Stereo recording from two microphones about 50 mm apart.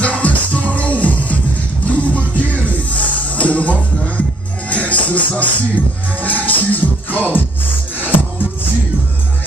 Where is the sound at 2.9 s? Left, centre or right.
Left.